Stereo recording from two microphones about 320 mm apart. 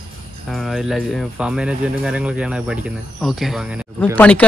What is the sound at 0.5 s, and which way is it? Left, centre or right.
Speech, centre.